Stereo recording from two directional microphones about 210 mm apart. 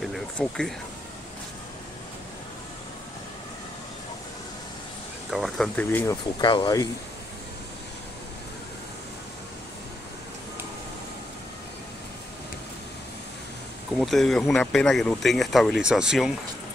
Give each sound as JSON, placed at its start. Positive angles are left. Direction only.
{"t": 0.0, "sound": "speech", "side_deg": 0}
{"t": 5.3, "sound": "speech", "side_deg": 0}
{"t": 6.4, "sound": "speech", "side_deg": 20}
{"t": 13.9, "sound": "speech", "side_deg": 0}